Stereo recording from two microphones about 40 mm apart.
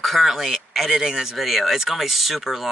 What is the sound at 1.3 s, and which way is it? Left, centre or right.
Speech, centre.